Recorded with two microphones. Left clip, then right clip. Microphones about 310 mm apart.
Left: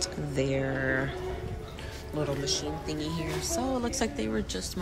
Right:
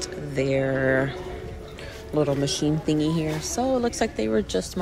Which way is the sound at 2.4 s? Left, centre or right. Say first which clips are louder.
Right 6 dB; right.